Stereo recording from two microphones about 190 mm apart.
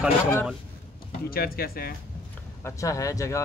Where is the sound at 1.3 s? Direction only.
50° left (ahead or behind).